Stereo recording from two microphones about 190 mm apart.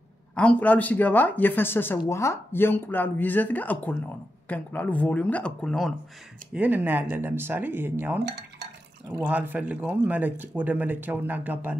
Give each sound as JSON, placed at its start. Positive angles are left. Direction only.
{"t": 0.4, "sound": "speech", "side_deg": 5}
{"t": 6.5, "sound": "speech", "side_deg": -10}
{"t": 8.2, "sound": "cutlery", "side_deg": -60}
{"t": 9.1, "sound": "speech", "side_deg": -10}